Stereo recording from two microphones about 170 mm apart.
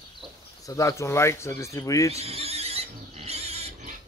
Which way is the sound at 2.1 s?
35° right (ahead or behind).